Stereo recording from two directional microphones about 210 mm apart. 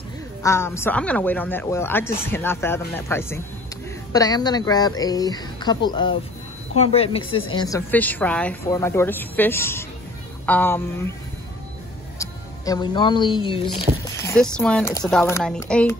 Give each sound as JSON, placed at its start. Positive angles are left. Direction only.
{"t": 0.4, "sound": "speech", "side_deg": 15}
{"t": 7.5, "sound": "speech", "side_deg": 15}
{"t": 12.2, "sound": "speech", "side_deg": 15}
{"t": 14.0, "sound": "a sound", "side_deg": 15}
{"t": 14.4, "sound": "speech", "side_deg": 5}